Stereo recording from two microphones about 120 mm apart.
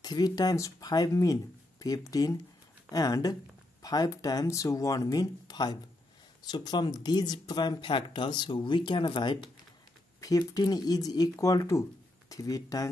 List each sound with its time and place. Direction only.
0.0 s speech: 35° left (ahead or behind)
10.2 s speech: 30° left (ahead or behind)